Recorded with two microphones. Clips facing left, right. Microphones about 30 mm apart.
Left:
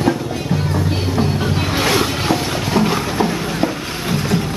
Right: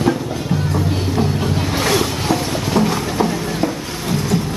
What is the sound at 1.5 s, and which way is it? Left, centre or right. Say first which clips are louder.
Vehicle: left 1 dB; centre.